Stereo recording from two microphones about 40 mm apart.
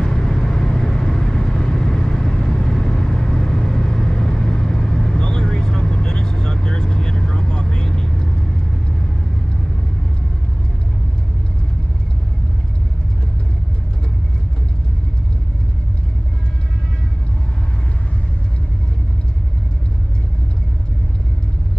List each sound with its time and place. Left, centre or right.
0.0 s vehicle: centre